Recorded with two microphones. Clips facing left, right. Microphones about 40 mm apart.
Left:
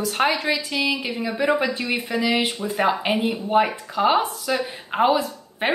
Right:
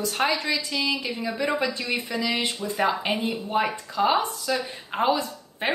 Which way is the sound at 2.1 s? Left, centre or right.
Left.